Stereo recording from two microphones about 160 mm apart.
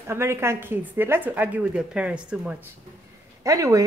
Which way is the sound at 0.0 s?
15° right (ahead or behind).